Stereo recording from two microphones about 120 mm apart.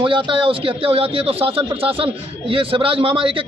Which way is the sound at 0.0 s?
45° right (ahead or behind).